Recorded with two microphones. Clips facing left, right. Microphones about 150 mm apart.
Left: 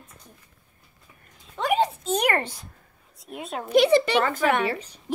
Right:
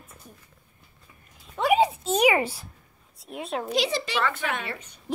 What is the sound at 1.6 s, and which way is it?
Speech, 10° right (ahead or behind).